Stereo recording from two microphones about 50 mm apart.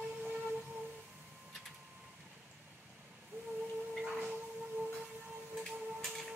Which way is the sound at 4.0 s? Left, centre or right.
Centre.